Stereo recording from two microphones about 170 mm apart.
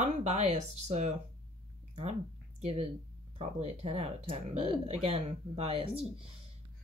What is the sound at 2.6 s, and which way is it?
Speech, 40° right (ahead or behind).